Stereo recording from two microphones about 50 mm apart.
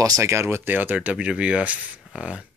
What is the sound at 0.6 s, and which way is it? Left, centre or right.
Speech, right.